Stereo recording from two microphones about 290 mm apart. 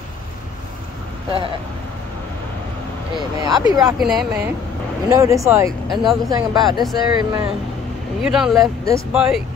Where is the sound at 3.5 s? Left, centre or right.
Centre.